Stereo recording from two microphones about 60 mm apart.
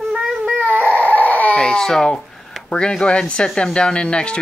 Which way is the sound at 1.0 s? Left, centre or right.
Left.